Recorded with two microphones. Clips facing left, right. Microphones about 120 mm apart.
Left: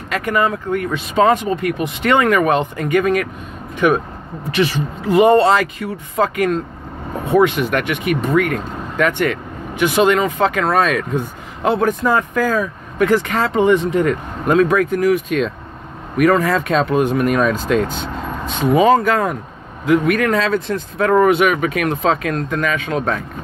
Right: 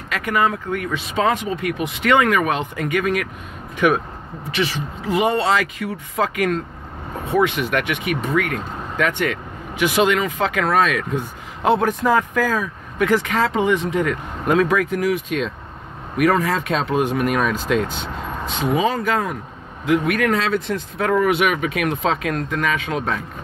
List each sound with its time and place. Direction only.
0.1 s speech: 40° left (ahead or behind)
4.6 s speech: 50° left (ahead or behind)
7.2 s speech: 55° left (ahead or behind)
7.7 s speech: 40° left (ahead or behind)
12.4 s speech: 45° left (ahead or behind)
19.9 s speech: 45° left (ahead or behind)